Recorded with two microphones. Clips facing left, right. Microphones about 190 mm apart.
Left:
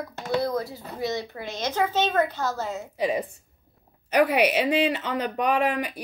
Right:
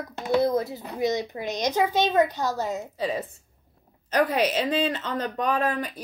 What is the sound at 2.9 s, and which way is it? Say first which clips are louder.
Speech: left 3 dB; 15° left (ahead or behind).